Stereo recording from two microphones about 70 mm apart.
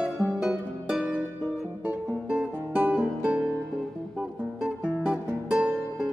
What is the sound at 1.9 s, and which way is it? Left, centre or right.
Music, right.